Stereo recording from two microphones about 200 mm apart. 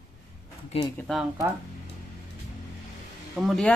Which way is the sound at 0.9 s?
Centre (ahead or behind).